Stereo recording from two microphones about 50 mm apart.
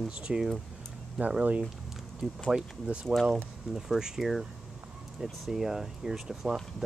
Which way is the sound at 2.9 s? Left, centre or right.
Right.